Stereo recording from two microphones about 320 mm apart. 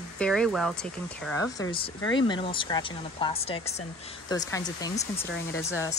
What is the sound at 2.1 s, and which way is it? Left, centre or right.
Speech, centre.